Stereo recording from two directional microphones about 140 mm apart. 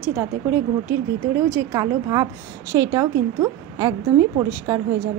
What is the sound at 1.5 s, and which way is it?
Speech, 25° right (ahead or behind).